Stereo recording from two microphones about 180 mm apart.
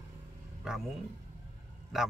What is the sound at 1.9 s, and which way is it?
Speech, centre (ahead or behind).